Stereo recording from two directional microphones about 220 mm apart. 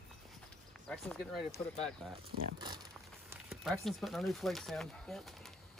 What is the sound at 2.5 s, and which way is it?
Speech, 20° right (ahead or behind).